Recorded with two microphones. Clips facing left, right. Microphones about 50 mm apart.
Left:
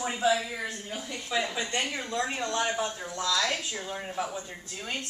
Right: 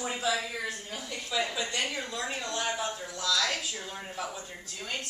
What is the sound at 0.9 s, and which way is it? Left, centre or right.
Speech, centre.